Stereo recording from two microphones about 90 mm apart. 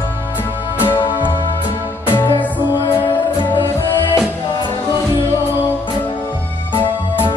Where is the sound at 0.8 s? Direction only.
60° left (ahead or behind).